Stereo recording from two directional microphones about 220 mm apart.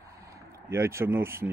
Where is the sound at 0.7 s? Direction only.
10° right (ahead or behind).